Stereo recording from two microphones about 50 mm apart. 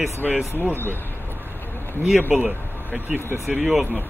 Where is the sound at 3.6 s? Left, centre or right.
Centre.